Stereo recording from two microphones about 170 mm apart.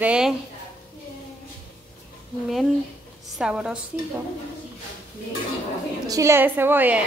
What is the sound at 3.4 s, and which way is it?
Speech, 5° right (ahead or behind).